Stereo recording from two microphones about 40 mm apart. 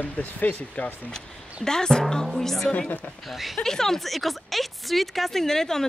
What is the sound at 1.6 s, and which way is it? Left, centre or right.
Speech, centre.